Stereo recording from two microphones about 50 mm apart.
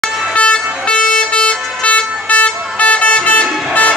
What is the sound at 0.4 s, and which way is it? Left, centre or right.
Vehicle, left.